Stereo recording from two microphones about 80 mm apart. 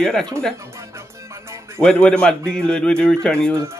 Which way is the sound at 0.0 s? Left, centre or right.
Centre.